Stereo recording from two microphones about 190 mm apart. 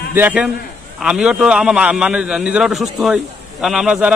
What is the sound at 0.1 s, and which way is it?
A man's voice, 10° right (ahead or behind).